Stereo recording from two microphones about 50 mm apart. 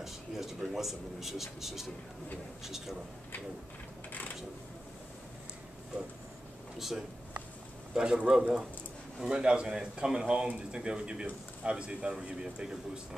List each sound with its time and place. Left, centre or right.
0.0 s speech: centre
7.9 s speech: centre